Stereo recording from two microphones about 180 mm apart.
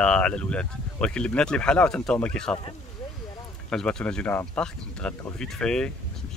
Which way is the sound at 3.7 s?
5° left (ahead or behind).